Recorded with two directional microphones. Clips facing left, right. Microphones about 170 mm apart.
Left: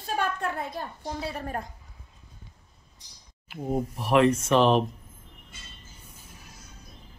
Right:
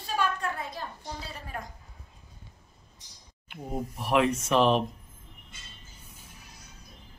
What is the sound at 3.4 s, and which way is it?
Speech, centre (ahead or behind).